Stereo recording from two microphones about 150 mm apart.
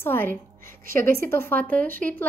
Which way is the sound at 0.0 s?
15° left (ahead or behind).